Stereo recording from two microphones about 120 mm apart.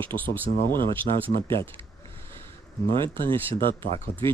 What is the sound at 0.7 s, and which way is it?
Speech, 45° right (ahead or behind).